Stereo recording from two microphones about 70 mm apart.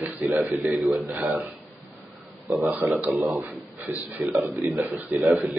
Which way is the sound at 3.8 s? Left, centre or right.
Right.